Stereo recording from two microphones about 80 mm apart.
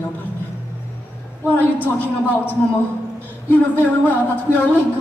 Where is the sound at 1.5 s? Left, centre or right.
Left.